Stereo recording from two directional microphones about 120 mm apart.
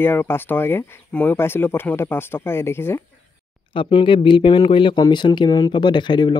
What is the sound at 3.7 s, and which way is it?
Speech, 45° left (ahead or behind).